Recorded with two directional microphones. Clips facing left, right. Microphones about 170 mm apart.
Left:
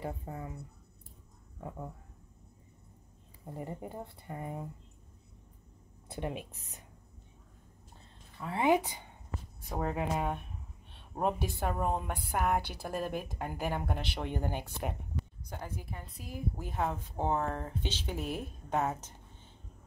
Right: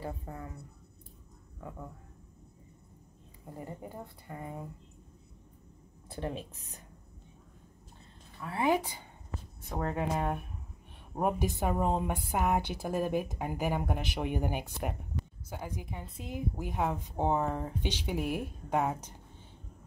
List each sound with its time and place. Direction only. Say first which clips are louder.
0.0 s speech: left 1 dB; 20° left (ahead or behind)
3.5 s speech: left 2 dB; 20° left (ahead or behind)
6.0 s speech: even; 20° left (ahead or behind)
8.4 s speech: left 1 dB; 20° left (ahead or behind)
9.7 s speech: right 1 dB; 5° left (ahead or behind)
11.1 s a woman's voice: right 2 dB; 10° right (ahead or behind)